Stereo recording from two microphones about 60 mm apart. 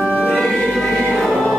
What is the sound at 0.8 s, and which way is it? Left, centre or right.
Music, centre.